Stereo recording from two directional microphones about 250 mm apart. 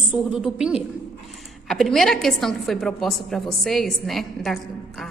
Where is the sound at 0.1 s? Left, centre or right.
Centre.